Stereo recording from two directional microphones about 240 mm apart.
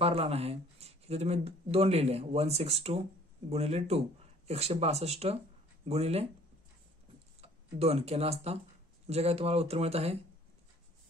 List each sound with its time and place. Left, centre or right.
0.0 s speech: right
7.4 s speech: right